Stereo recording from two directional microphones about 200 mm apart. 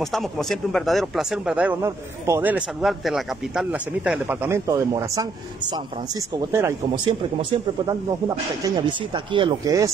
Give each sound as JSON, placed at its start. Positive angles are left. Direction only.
{"t": 0.0, "sound": "speech", "side_deg": 0}
{"t": 6.3, "sound": "speech", "side_deg": -15}
{"t": 8.6, "sound": "speech", "side_deg": -20}